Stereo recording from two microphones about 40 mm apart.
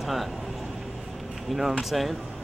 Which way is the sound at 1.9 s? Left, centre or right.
Centre.